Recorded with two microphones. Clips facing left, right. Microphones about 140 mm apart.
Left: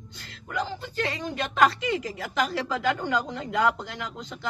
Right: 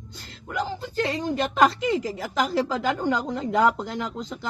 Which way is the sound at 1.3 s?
30° right (ahead or behind).